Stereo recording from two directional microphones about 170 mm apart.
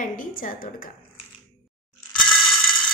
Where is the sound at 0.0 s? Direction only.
55° left (ahead or behind).